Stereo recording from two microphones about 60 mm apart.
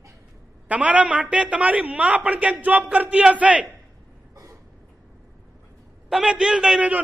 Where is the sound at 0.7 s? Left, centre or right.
Right.